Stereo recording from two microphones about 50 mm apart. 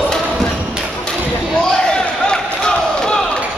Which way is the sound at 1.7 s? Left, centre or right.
Centre.